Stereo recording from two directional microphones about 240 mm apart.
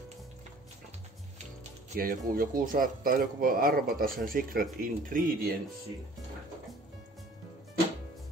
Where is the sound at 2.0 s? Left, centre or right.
Right.